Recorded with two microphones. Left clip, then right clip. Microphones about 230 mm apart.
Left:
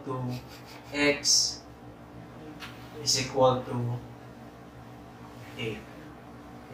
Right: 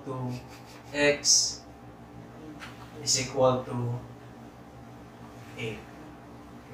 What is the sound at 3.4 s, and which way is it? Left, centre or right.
Speech, centre.